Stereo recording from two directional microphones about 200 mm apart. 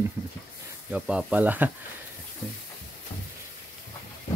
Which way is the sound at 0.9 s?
5° right (ahead or behind).